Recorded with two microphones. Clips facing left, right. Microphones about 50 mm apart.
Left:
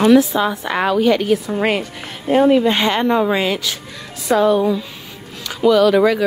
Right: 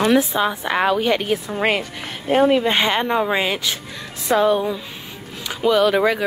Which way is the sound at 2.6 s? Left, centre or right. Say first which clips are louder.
Left 2 dB; right.